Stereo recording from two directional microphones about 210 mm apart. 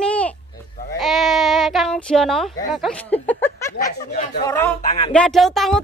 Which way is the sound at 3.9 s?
45° left (ahead or behind).